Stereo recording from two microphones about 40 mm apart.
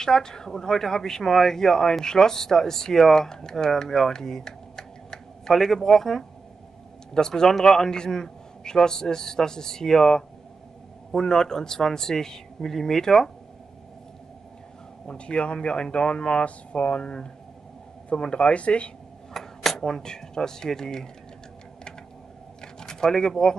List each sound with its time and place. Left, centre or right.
0.0 s speech: centre
15.0 s speech: left
18.3 s speech: left
19.3 s speech: centre
22.6 s a sound: centre